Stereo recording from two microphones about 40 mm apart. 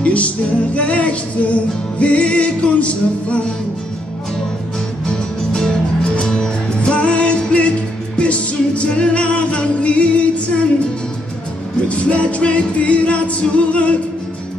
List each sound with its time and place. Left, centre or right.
0.0 s music: left
6.0 s music: left
11.9 s music: left